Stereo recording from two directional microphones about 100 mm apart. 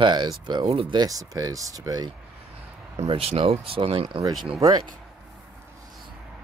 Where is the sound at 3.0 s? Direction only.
80° right.